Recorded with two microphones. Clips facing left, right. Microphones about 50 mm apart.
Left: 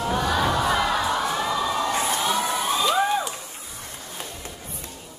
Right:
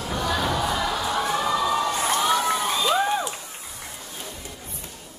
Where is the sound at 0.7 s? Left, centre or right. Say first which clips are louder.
Left 3 dB; left.